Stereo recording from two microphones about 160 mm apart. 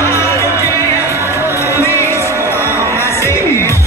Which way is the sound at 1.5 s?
15° left (ahead or behind).